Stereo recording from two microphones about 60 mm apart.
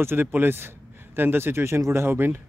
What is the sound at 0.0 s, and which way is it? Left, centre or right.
A man's voice, right.